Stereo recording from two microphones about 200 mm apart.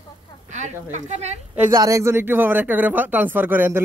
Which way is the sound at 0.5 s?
35° right (ahead or behind).